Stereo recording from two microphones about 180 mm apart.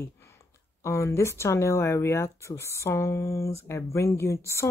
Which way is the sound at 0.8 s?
15° left (ahead or behind).